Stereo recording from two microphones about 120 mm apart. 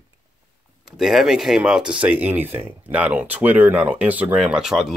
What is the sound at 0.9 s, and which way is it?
Speech, 5° right (ahead or behind).